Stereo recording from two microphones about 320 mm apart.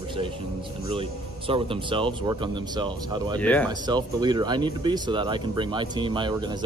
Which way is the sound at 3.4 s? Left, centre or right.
Centre.